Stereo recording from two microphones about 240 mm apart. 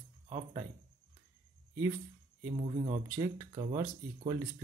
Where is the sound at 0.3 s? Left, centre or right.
Centre.